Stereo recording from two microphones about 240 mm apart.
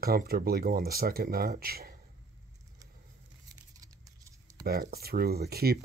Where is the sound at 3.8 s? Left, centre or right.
Centre.